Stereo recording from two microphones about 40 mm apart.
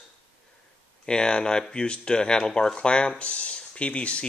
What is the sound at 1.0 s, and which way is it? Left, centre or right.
Speech, left.